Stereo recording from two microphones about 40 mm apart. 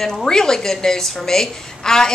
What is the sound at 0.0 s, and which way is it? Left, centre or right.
A woman's voice, centre.